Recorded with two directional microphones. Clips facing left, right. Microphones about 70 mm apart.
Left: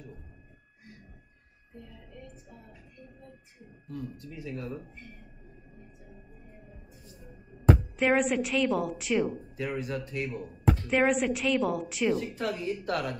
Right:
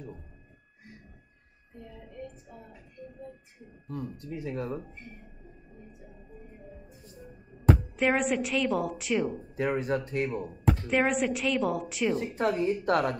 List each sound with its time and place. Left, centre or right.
3.8 s speech: right
7.9 s speech: centre
9.6 s speech: right
10.9 s speech: centre
12.2 s speech: right